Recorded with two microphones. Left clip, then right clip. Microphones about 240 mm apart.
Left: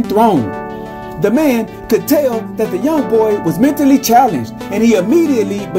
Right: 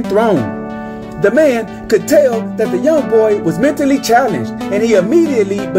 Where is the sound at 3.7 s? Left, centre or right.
Left.